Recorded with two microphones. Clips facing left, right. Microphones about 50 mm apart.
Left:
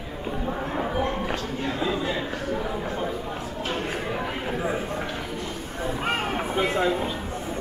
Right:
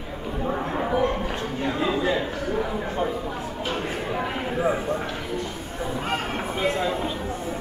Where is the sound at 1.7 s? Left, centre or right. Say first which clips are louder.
Right 3 dB; centre.